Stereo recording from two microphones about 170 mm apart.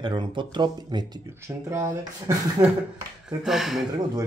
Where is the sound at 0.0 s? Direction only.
30° right (ahead or behind).